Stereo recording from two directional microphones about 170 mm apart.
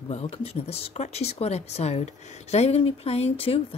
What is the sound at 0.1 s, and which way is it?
Speech, 40° left (ahead or behind).